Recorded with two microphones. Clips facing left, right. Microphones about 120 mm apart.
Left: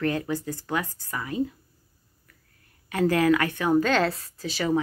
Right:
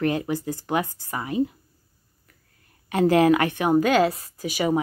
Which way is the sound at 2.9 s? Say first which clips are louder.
Right 4 dB; 20° right (ahead or behind).